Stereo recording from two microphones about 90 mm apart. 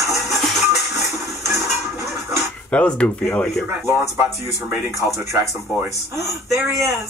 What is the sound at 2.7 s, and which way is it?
Speech, 15° left (ahead or behind).